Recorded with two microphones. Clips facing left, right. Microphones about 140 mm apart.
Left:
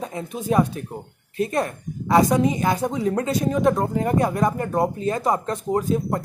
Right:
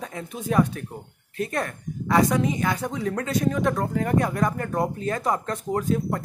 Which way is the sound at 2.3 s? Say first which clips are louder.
Left 4 dB; 30° left (ahead or behind).